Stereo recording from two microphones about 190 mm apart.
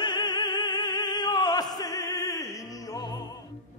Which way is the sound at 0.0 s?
20° left (ahead or behind).